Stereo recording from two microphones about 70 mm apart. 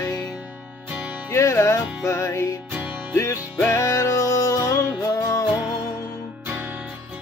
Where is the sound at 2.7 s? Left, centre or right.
Right.